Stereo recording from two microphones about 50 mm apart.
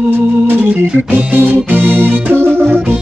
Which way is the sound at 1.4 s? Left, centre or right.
Right.